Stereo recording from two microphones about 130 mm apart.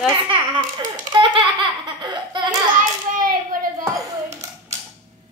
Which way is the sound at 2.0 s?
35° right (ahead or behind).